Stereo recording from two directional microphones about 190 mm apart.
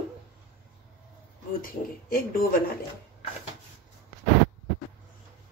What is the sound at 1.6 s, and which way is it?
Speech, 50° left (ahead or behind).